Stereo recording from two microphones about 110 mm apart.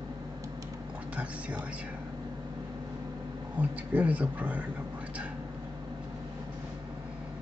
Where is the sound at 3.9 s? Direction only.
15° right (ahead or behind).